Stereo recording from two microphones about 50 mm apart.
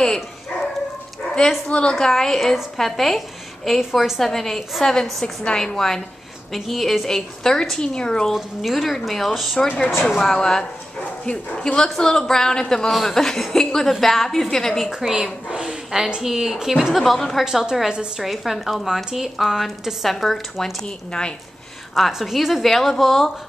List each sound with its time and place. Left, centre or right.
0.0 s dog: centre
1.7 s a woman's voice: left; by 4.9 s centre
4.9 s a woman's voice: centre
8.3 s a woman's voice: centre
11.0 s a woman's voice: left
14.9 s a woman's voice: centre
18.2 s speech: centre
20.0 s speech: centre
21.9 s speech: centre